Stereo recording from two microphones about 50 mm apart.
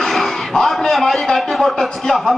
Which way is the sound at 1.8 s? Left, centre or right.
Centre.